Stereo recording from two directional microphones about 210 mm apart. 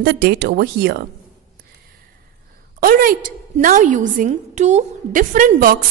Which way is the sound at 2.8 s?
45° right (ahead or behind).